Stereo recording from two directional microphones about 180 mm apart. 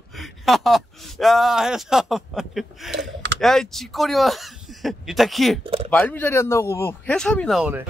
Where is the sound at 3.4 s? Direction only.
Centre (ahead or behind).